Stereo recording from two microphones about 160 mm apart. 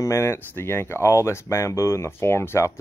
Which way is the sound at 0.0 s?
15° left (ahead or behind).